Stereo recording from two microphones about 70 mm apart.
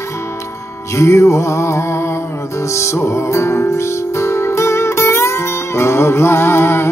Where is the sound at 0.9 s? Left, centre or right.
Left.